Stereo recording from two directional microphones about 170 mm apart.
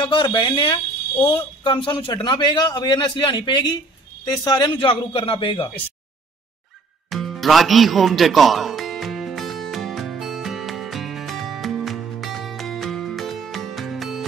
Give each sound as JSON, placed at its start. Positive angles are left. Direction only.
{"t": 0.0, "sound": "a man's voice", "side_deg": 30}
{"t": 7.1, "sound": "music", "side_deg": 0}